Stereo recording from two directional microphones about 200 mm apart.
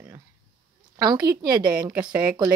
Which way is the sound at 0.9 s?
20° right (ahead or behind).